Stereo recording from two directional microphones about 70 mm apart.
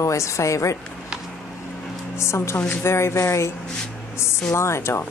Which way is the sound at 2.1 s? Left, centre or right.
Left.